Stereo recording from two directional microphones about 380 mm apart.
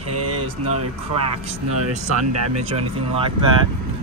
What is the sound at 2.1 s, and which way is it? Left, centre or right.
Speech, right.